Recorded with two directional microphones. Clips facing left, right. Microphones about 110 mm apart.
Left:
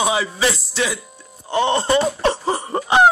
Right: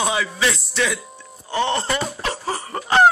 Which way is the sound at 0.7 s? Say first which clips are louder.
Even; 5° left (ahead or behind).